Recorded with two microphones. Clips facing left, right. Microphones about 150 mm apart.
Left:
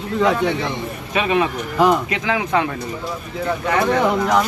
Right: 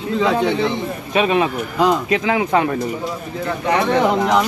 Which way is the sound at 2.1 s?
25° right (ahead or behind).